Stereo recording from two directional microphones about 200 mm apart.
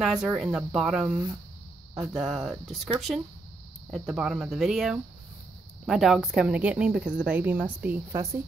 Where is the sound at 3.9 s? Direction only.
Centre (ahead or behind).